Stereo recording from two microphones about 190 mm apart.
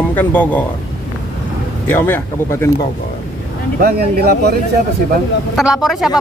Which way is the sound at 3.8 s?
55° right (ahead or behind).